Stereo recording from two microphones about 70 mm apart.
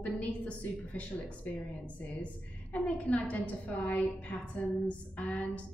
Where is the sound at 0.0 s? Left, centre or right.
Left.